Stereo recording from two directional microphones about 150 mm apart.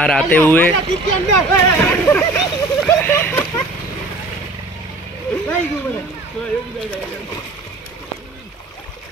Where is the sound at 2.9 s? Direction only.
15° left (ahead or behind).